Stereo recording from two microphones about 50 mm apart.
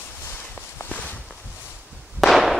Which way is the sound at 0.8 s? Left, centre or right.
Left.